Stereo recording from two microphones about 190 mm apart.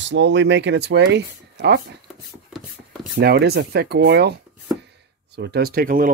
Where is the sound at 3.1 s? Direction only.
60° right (ahead or behind).